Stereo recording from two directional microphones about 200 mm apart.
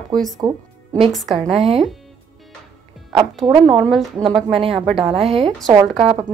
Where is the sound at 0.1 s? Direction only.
Centre (ahead or behind).